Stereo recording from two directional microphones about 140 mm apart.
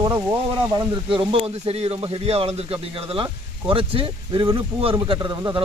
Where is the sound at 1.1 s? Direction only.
40° right (ahead or behind).